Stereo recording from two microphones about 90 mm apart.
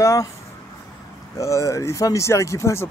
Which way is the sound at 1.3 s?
35° left (ahead or behind).